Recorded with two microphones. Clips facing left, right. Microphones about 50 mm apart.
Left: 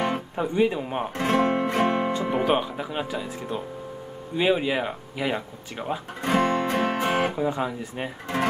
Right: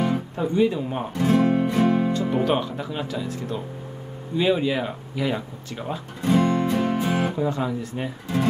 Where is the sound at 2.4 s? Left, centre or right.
Centre.